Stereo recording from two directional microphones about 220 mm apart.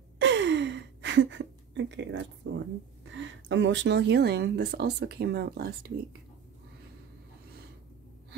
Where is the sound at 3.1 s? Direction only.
55° right (ahead or behind).